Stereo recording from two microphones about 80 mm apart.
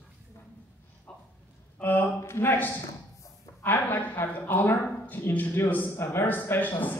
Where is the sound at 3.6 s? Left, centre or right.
Left.